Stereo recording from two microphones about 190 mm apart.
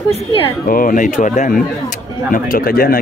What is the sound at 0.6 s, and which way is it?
Speech, 45° left (ahead or behind).